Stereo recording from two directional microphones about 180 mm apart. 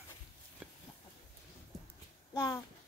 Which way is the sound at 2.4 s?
15° left (ahead or behind).